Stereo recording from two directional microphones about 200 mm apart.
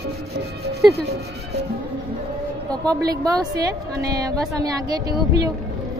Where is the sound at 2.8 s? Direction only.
20° right (ahead or behind).